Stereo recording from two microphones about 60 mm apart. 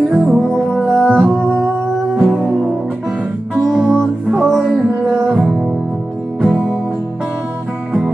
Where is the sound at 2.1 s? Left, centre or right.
Centre.